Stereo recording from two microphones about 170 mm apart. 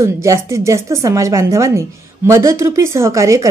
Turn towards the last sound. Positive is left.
turn(degrees=-20)  # may be behind; listen again after turning